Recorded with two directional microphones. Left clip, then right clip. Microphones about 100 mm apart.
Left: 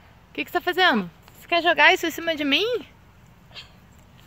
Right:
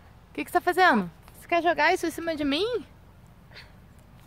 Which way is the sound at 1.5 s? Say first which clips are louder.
Left 5 dB; 25° left (ahead or behind).